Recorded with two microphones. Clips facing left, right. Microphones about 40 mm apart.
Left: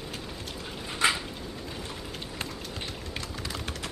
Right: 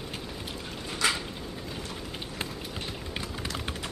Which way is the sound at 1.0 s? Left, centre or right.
Left.